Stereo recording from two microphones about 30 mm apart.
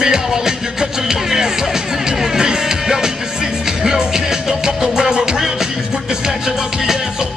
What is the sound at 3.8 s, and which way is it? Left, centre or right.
Speech, right.